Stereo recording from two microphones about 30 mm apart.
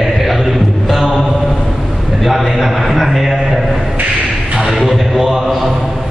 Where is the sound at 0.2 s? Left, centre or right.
Centre.